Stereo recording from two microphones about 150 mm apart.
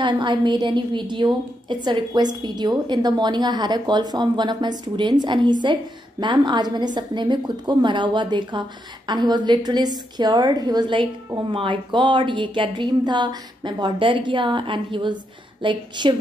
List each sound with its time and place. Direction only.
0.0 s a woman's voice: 30° right (ahead or behind)